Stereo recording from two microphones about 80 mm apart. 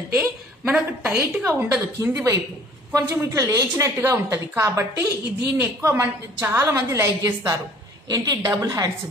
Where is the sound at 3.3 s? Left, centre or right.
Right.